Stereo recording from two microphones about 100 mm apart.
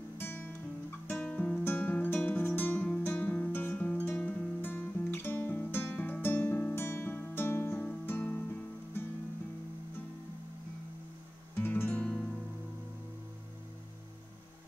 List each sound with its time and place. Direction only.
0.2 s guitar: 20° left (ahead or behind)
1.0 s music: 15° left (ahead or behind)
11.5 s music: 20° left (ahead or behind)